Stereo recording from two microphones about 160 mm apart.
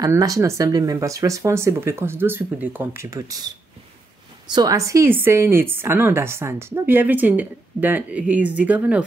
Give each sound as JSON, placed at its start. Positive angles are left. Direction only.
{"t": 0.0, "sound": "speech", "side_deg": -20}
{"t": 4.5, "sound": "speech", "side_deg": -25}